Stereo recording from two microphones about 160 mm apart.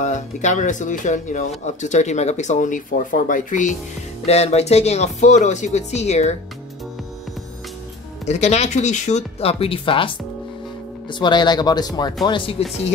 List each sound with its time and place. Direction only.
0.0 s speech: 50° left (ahead or behind)
4.3 s speech: 40° left (ahead or behind)
8.3 s speech: 45° left (ahead or behind)